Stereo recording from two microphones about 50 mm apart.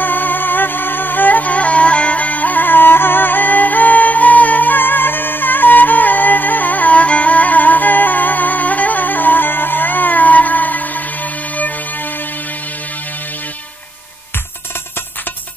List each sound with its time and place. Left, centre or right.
0.0 s music: left